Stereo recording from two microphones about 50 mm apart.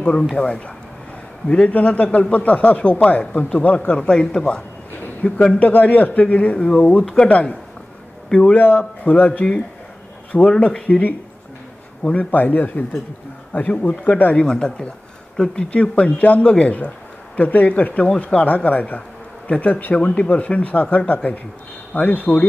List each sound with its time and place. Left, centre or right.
0.0 s speech: centre
1.7 s speech: left
4.3 s speech: centre
5.4 s speech: left
8.5 s a man's voice: left
12.2 s a man's voice: left
14.4 s speech: centre; by 20.0 s left
20.0 s speech: centre